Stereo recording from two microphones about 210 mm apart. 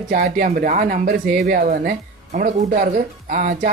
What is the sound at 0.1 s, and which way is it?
Speech, 40° right (ahead or behind).